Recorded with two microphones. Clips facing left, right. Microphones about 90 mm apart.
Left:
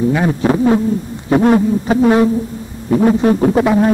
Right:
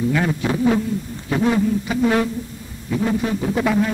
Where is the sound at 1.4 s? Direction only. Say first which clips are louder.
Left 4 dB; 50° left (ahead or behind).